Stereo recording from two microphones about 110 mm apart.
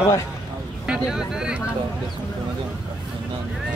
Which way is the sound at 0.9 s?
5° right (ahead or behind).